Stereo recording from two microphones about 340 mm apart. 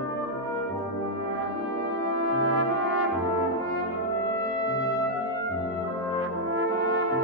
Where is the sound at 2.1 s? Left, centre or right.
Right.